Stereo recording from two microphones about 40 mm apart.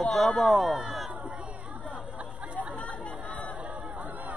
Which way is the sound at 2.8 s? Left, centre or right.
Left.